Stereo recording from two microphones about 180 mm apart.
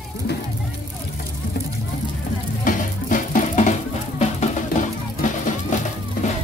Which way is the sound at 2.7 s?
45° left (ahead or behind).